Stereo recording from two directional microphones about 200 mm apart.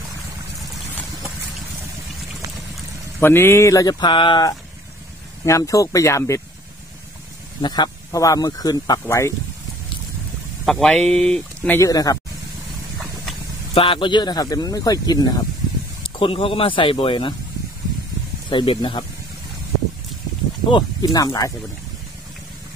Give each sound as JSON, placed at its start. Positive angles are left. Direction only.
{"t": 3.2, "sound": "speech", "side_deg": 10}
{"t": 7.6, "sound": "speech", "side_deg": 20}
{"t": 10.6, "sound": "speech", "side_deg": 0}
{"t": 13.7, "sound": "speech", "side_deg": 25}
{"t": 18.5, "sound": "speech", "side_deg": 25}
{"t": 20.7, "sound": "speech", "side_deg": 20}